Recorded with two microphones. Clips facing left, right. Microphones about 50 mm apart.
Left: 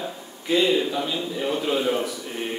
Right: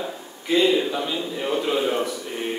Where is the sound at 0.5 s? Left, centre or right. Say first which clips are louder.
Right 1 dB; centre.